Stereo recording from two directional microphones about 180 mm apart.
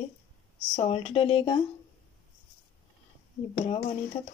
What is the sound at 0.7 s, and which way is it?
Speech, 35° left (ahead or behind).